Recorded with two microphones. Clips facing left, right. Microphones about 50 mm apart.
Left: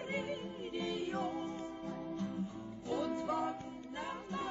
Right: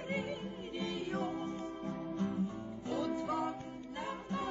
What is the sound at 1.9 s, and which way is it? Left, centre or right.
Music, right.